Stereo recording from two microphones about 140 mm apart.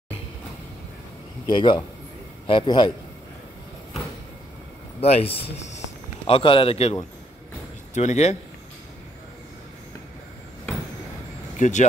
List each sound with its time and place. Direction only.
1.4 s a man's voice: 35° left (ahead or behind)
5.0 s a man's voice: 45° left (ahead or behind)
7.9 s speech: 55° left (ahead or behind)
11.5 s vehicle: 60° left (ahead or behind)